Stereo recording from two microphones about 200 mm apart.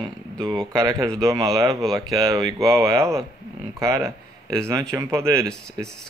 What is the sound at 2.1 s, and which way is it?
Speech, 20° right (ahead or behind).